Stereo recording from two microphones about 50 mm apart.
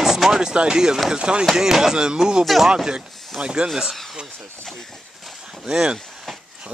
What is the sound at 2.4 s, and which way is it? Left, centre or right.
Speech, centre.